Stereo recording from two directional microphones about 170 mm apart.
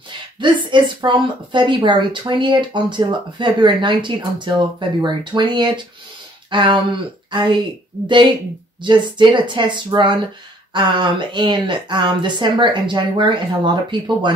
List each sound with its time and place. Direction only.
0.4 s a woman's voice: 30° right (ahead or behind)
8.8 s a woman's voice: 30° right (ahead or behind)